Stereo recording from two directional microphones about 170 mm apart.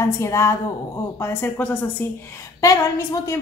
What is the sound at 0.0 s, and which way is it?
A woman's voice, 15° left (ahead or behind).